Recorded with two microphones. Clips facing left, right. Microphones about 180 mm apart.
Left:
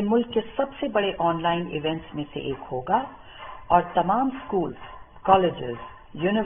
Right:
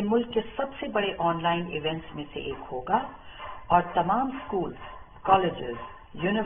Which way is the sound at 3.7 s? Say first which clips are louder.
Left 3 dB; centre (ahead or behind).